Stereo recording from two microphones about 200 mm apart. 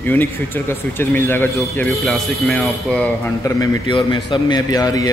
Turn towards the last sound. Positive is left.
turn(degrees=20)  # may be behind; listen again after turning